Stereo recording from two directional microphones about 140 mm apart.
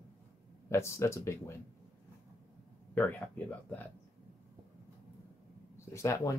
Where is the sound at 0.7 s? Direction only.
20° left (ahead or behind).